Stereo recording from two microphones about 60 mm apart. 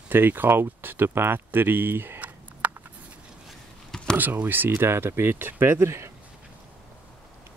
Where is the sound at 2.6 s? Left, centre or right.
Right.